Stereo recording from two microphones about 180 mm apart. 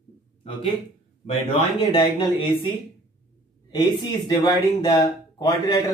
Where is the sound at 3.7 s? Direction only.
20° left (ahead or behind).